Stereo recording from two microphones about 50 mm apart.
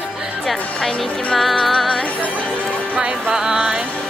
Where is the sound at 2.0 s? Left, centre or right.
Left.